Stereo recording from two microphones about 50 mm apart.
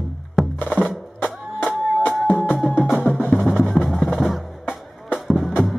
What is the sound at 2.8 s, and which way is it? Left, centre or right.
Percussion, centre.